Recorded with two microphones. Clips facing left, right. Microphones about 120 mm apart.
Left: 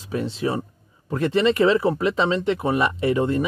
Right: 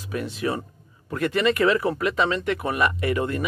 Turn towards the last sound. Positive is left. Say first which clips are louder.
# left 4 dB
turn(degrees=30)  # may be behind; listen again after turning